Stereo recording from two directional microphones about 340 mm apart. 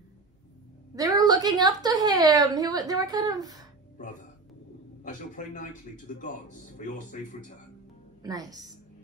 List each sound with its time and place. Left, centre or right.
0.9 s a woman's voice: centre
5.0 s a man's voice: left
8.2 s a woman's voice: centre